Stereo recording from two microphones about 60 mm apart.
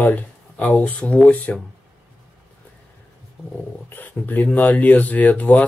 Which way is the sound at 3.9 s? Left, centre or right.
Left.